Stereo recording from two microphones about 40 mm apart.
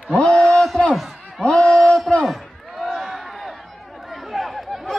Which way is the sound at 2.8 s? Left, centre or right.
Centre.